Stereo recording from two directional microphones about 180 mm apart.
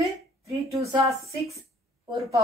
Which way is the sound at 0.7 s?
15° right (ahead or behind).